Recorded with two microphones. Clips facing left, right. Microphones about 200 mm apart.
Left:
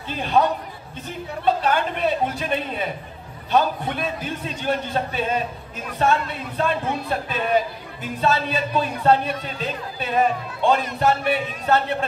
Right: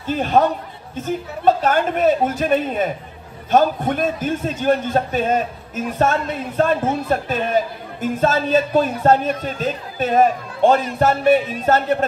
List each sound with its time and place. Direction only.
0.0 s a man's voice: 45° right (ahead or behind)